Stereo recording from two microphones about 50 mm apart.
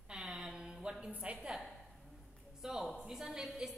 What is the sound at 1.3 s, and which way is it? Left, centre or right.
Speech, right.